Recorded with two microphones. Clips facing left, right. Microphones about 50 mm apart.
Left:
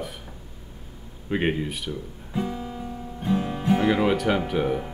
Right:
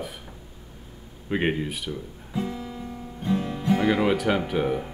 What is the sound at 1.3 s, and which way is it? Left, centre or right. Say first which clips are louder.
Speech: even; centre.